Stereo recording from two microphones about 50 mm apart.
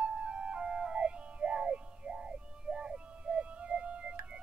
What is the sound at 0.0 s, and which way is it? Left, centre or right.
Music, centre.